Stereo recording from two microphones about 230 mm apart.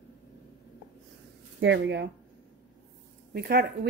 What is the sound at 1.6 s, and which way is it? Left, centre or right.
Speech, right.